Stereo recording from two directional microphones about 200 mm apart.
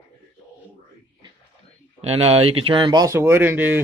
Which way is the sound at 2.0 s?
30° right (ahead or behind).